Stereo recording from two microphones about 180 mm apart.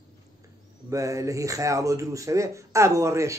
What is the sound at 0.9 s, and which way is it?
A man's voice, 20° right (ahead or behind).